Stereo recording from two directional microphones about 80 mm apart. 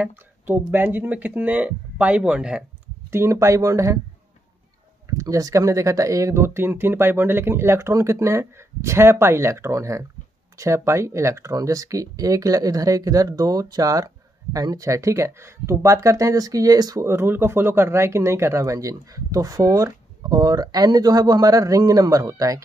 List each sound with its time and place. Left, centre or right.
0.0 s speech: right
3.1 s speech: right
5.2 s speech: right
17.0 s speech: right